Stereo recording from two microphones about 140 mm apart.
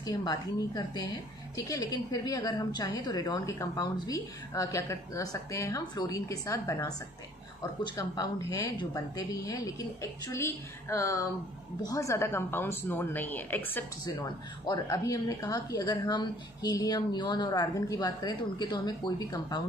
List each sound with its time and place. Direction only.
0.0 s a woman's voice: 25° left (ahead or behind)
7.9 s a woman's voice: 20° left (ahead or behind)
14.2 s a woman's voice: 30° left (ahead or behind)